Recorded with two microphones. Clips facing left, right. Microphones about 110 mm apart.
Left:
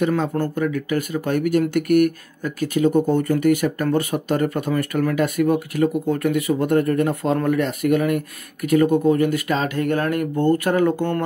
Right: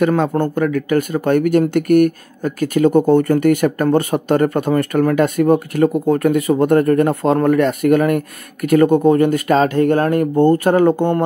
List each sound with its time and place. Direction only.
0.0 s speech: 55° right (ahead or behind)
2.7 s speech: 60° right (ahead or behind)
3.2 s speech: 50° right (ahead or behind)
10.9 s speech: 20° right (ahead or behind)